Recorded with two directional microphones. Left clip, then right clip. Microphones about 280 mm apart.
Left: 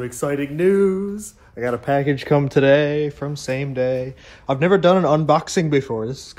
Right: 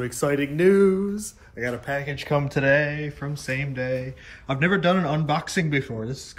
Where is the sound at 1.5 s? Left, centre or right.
Left.